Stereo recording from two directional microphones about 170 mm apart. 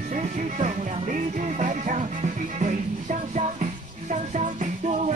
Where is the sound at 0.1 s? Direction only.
45° right (ahead or behind).